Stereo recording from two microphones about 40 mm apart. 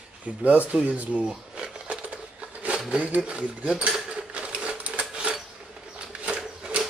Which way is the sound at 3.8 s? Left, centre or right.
Right.